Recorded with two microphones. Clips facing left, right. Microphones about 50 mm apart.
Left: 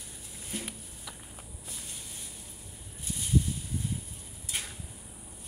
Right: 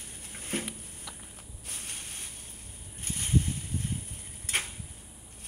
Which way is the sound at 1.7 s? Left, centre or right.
Right.